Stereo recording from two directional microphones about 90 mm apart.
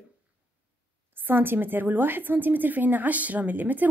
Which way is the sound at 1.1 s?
20° right (ahead or behind).